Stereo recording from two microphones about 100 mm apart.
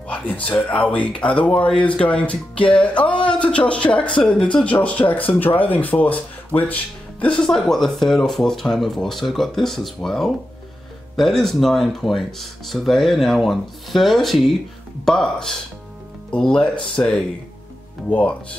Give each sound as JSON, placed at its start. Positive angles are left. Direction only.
{"t": 0.5, "sound": "speech", "side_deg": 15}